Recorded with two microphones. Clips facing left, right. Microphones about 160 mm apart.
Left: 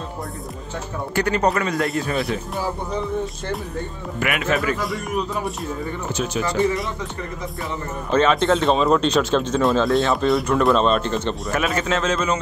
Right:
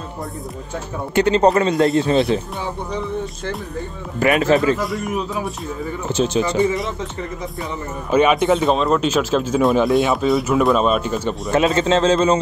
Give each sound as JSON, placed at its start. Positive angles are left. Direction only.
{"t": 1.1, "sound": "speech", "side_deg": -25}
{"t": 2.5, "sound": "speech", "side_deg": 0}
{"t": 4.2, "sound": "speech", "side_deg": -30}
{"t": 4.7, "sound": "speech", "side_deg": 0}
{"t": 6.1, "sound": "speech", "side_deg": -25}
{"t": 6.6, "sound": "speech", "side_deg": 0}
{"t": 8.1, "sound": "speech", "side_deg": -15}
{"t": 8.5, "sound": "speech", "side_deg": 0}
{"t": 9.7, "sound": "speech", "side_deg": -20}
{"t": 10.1, "sound": "speech", "side_deg": 0}
{"t": 11.5, "sound": "speech", "side_deg": -25}